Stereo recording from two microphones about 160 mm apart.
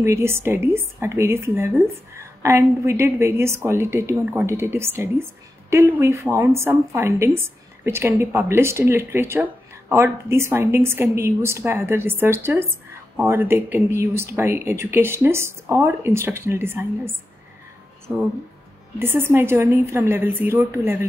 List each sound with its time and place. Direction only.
0.0 s a woman's voice: 15° right (ahead or behind)
18.1 s speech: 5° right (ahead or behind)
18.9 s a woman's voice: 15° right (ahead or behind)